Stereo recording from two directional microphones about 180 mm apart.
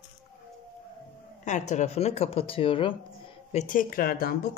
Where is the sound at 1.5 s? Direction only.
40° left (ahead or behind).